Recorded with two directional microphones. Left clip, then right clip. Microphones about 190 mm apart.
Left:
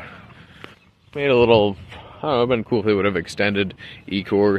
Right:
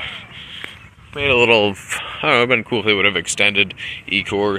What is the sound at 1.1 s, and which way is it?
Speech, 50° left (ahead or behind).